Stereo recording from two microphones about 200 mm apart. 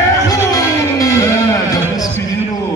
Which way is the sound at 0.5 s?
15° left (ahead or behind).